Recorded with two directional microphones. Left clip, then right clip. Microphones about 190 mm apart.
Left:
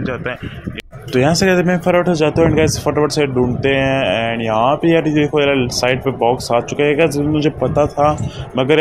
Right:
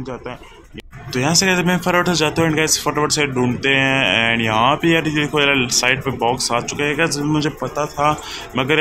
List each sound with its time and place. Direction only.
1.1 s speech: 20° left (ahead or behind)